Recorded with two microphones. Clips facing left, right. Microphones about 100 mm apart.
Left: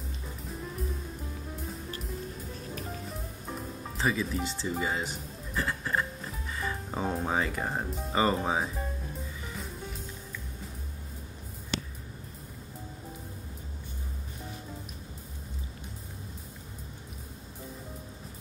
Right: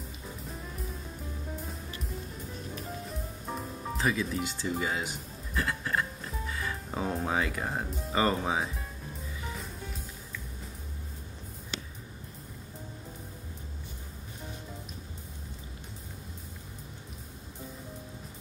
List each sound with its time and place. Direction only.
3.9 s speech: centre (ahead or behind)